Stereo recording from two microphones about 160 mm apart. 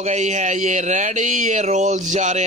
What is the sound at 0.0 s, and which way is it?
Speech, 45° right (ahead or behind).